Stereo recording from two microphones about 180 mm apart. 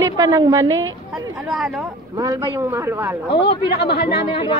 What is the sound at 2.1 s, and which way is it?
Speech, 20° right (ahead or behind).